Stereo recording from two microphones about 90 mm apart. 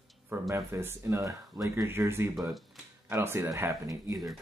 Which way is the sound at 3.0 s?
25° right (ahead or behind).